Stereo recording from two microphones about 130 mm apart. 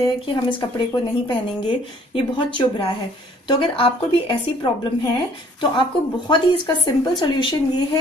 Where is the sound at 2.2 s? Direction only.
40° left (ahead or behind).